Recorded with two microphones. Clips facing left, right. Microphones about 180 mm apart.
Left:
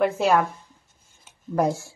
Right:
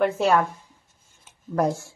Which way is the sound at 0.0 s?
Centre (ahead or behind).